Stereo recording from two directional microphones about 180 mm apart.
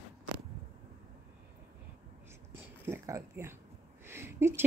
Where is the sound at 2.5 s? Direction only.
15° right (ahead or behind).